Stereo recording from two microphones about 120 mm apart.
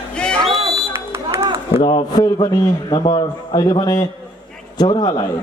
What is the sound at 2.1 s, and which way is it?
A man's voice, 35° left (ahead or behind).